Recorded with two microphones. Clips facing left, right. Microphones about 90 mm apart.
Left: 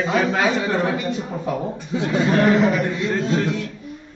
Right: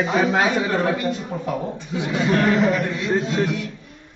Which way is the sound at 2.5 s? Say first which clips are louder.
Left 1 dB; centre (ahead or behind).